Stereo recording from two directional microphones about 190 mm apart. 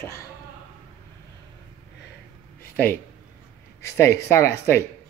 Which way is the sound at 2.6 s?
10° left (ahead or behind).